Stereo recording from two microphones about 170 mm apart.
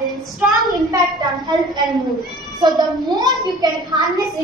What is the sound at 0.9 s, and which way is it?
A child's voice, 25° right (ahead or behind).